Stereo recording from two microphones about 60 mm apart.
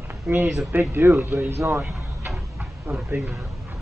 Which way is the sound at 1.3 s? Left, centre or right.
Right.